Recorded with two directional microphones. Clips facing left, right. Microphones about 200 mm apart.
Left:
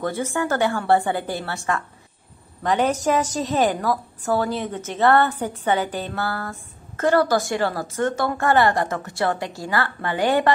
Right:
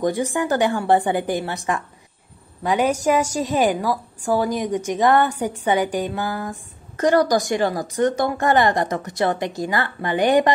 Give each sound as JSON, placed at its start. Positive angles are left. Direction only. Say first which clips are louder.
{"t": 0.0, "sound": "a woman's voice", "louder": "right 3 dB", "side_deg": -15}